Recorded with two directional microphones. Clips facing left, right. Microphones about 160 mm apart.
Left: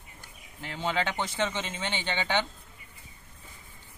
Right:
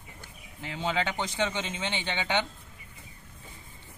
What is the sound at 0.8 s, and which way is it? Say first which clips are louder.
Speech: even; 5° left (ahead or behind).